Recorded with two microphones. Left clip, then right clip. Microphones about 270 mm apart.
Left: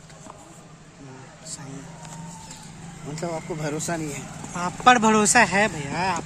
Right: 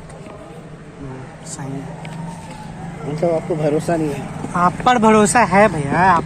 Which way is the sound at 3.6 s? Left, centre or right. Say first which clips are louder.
Right 9 dB; left.